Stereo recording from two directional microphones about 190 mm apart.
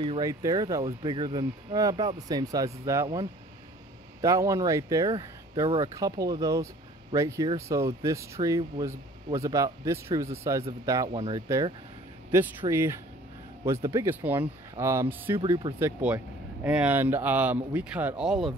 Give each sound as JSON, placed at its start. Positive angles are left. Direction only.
{"t": 0.0, "sound": "speech", "side_deg": -20}
{"t": 11.1, "sound": "speech", "side_deg": -30}
{"t": 11.4, "sound": "speech", "side_deg": -15}
{"t": 15.3, "sound": "speech", "side_deg": -25}
{"t": 15.8, "sound": "speech", "side_deg": -10}